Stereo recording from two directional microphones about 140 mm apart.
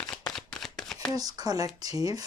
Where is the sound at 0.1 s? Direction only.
5° left (ahead or behind).